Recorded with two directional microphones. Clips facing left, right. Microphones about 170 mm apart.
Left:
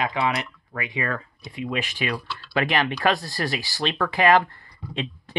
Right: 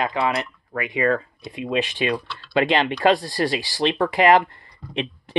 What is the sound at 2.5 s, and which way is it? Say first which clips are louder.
Speech: right 4 dB; 25° right (ahead or behind).